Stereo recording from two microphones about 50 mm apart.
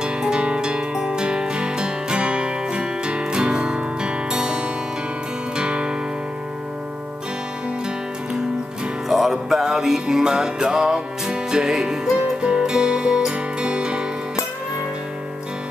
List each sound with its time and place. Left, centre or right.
0.0 s music: centre
9.1 s music: centre